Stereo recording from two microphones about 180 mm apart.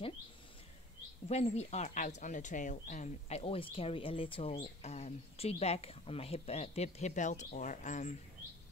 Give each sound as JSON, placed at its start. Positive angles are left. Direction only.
{"t": 1.3, "sound": "speech", "side_deg": 35}